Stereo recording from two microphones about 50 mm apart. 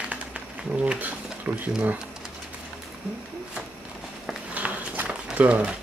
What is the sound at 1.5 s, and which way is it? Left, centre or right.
Speech, right.